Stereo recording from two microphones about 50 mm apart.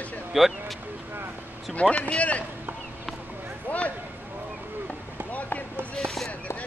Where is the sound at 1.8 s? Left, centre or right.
Left.